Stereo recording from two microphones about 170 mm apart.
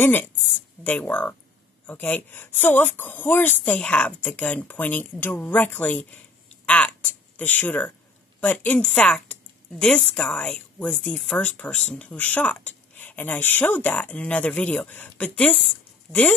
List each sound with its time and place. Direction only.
0.0 s speech: 10° left (ahead or behind)